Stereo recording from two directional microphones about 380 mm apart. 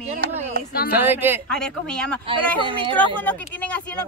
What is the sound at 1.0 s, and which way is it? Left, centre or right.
Speech, centre.